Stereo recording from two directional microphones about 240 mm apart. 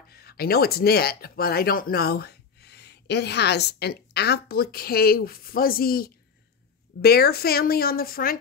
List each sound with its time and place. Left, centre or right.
0.1 s speech: left